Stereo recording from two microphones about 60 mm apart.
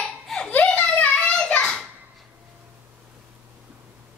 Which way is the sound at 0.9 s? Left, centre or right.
Left.